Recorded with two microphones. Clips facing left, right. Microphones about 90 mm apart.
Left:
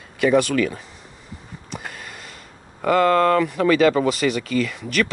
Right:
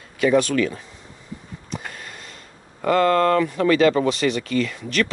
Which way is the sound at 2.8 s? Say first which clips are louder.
Left 1 dB; 5° left (ahead or behind).